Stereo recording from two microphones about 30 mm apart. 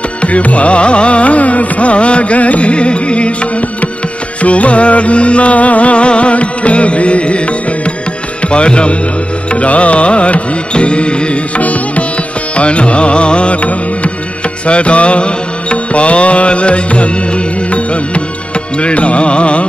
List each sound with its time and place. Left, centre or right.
0.2 s music: left
4.4 s music: left